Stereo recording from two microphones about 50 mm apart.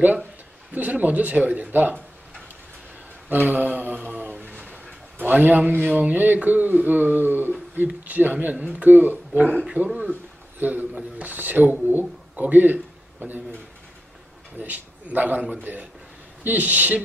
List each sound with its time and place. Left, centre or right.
0.0 s a man's voice: right
3.3 s speech: right
9.8 s speech: centre
10.6 s speech: right
14.6 s speech: right